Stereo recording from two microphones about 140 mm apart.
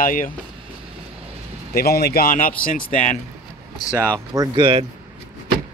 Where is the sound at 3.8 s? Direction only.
25° left (ahead or behind).